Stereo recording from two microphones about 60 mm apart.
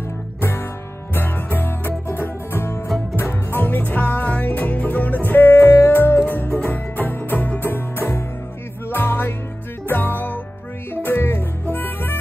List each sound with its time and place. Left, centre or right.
0.4 s music: left
11.7 s harmonica: left